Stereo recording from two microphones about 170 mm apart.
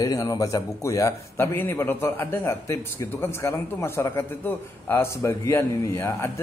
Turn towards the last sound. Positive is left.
turn(degrees=15)  # may be behind; listen again after turning